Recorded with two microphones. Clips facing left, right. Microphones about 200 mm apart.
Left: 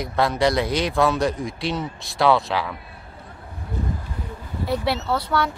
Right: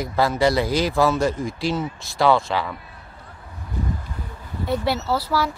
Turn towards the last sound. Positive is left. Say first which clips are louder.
# even
turn(degrees=-5)  # may be behind; listen again after turning